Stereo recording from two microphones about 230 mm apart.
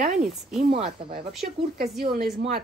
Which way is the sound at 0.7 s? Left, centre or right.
Right.